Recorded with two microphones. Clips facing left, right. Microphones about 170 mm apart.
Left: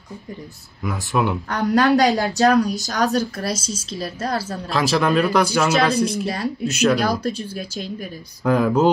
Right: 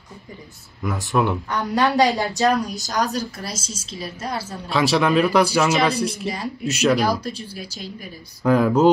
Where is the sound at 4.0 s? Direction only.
75° left (ahead or behind).